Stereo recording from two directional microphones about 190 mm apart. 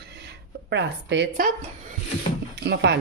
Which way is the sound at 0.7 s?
65° right (ahead or behind).